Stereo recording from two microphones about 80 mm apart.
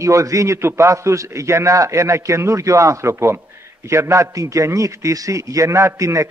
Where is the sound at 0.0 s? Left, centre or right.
Right.